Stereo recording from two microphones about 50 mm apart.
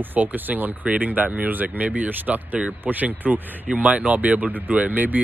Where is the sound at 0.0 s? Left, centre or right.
Right.